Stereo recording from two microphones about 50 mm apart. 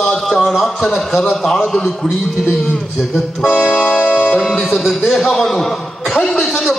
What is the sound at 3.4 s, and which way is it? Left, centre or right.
Music, left.